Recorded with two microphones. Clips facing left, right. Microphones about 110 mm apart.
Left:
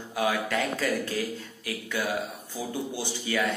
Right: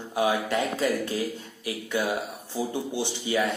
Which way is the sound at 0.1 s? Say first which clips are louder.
Right 2 dB; 25° right (ahead or behind).